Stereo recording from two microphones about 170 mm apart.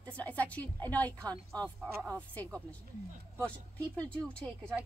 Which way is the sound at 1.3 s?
20° right (ahead or behind).